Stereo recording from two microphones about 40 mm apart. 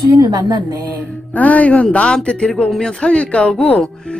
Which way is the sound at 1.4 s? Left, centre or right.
Left.